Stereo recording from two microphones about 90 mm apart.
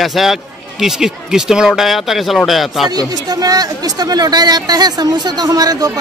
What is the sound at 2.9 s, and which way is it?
Speech, 45° right (ahead or behind).